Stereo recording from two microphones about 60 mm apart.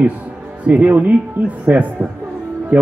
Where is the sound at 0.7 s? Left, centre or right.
Right.